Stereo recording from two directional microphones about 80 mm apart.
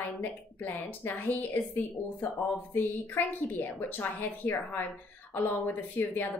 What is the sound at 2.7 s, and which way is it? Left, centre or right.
A woman's voice, left.